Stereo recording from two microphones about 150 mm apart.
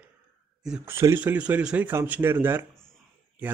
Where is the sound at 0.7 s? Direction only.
5° right (ahead or behind).